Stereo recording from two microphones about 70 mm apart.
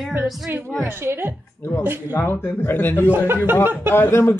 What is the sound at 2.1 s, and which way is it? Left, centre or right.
Speech, left.